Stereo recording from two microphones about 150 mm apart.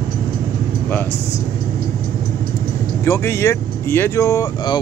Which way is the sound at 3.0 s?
20° left (ahead or behind).